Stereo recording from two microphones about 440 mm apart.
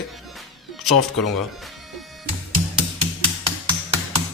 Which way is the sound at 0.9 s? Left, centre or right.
Left.